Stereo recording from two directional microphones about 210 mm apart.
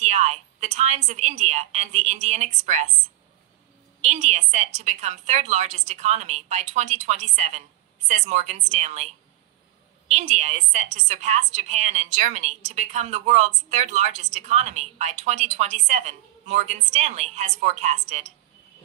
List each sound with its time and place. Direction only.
0.0 s a woman's voice: 30° right (ahead or behind)
4.0 s a woman's voice: 30° right (ahead or behind)